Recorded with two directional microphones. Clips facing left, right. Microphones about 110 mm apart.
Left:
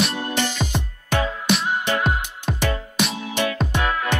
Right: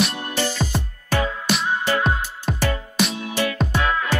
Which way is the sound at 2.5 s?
Centre (ahead or behind).